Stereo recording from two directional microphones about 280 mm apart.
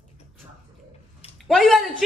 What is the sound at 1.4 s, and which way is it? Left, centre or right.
Speech, centre.